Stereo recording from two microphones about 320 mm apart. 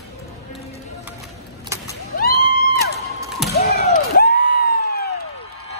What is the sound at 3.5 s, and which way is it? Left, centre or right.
Music, left.